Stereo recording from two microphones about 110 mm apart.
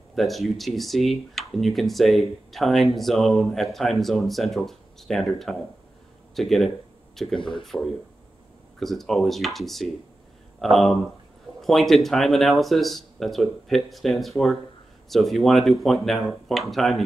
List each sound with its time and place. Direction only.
0.1 s speech: centre (ahead or behind)
7.3 s speech: 45° left (ahead or behind)
7.6 s speech: centre (ahead or behind)